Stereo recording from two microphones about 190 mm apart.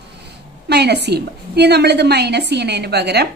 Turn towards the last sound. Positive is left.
turn(degrees=-60)  # may be behind; listen again after turning